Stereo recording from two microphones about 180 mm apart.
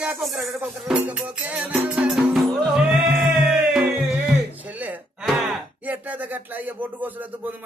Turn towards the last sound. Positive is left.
turn(degrees=-10)  # may be behind; listen again after turning